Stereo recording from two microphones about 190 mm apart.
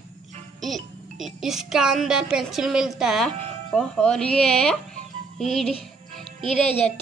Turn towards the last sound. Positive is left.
turn(degrees=35)  # may be behind; listen again after turning